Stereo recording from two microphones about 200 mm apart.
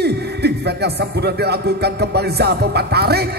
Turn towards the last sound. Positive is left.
turn(degrees=-55)  # may be behind; listen again after turning